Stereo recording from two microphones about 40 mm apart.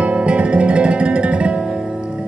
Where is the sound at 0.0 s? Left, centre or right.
Right.